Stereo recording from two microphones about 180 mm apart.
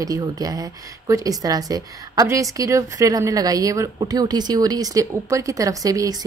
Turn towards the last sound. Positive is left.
turn(degrees=-20)  # may be behind; listen again after turning